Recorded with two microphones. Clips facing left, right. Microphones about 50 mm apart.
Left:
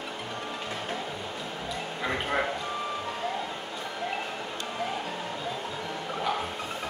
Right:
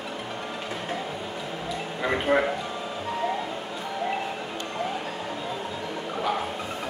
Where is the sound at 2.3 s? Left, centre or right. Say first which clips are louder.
Right 6 dB; right.